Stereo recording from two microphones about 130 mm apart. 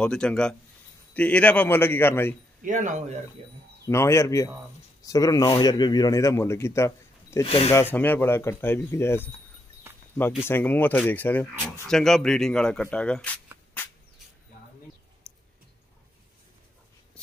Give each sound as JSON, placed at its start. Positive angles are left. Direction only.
{"t": 0.0, "sound": "speech", "side_deg": 5}
{"t": 2.6, "sound": "speech", "side_deg": -75}
{"t": 3.8, "sound": "speech", "side_deg": 20}
{"t": 7.4, "sound": "speech", "side_deg": 45}
{"t": 7.7, "sound": "speech", "side_deg": 15}
{"t": 10.5, "sound": "speech", "side_deg": 15}
{"t": 11.9, "sound": "speech", "side_deg": 5}